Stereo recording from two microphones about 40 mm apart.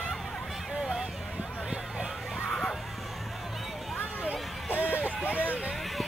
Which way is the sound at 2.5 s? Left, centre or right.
Centre.